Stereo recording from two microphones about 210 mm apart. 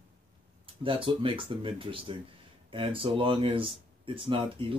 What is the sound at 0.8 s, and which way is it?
Speech, 25° right (ahead or behind).